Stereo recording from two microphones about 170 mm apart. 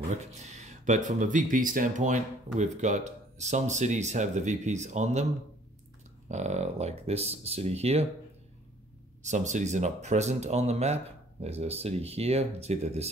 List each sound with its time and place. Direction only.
0.2 s speech: 40° right (ahead or behind)
6.2 s speech: 40° right (ahead or behind)
9.2 s speech: 45° right (ahead or behind)